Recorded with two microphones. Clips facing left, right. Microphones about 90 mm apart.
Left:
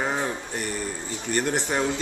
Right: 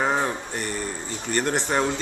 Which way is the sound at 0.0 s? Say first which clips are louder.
Right 4 dB; 30° right (ahead or behind).